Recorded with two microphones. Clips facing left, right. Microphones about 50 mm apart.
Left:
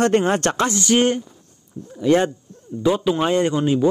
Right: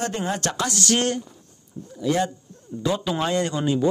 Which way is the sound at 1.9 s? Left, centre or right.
Left.